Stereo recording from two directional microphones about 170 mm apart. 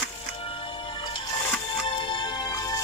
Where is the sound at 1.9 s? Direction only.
30° left (ahead or behind).